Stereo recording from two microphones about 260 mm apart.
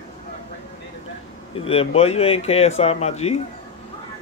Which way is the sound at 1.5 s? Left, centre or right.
Left.